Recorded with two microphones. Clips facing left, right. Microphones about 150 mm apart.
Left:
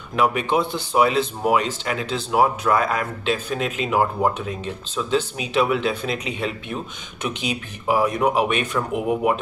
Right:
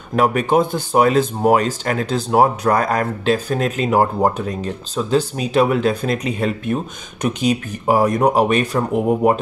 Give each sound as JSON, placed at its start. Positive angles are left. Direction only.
{"t": 0.1, "sound": "speech", "side_deg": -45}